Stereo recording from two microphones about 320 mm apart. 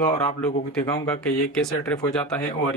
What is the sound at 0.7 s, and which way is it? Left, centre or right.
Speech, centre.